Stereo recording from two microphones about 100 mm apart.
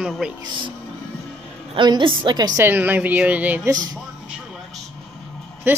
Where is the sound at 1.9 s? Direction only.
50° right (ahead or behind).